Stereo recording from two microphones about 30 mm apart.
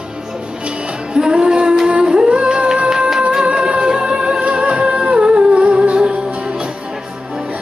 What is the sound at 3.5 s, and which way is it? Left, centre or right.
Music, right.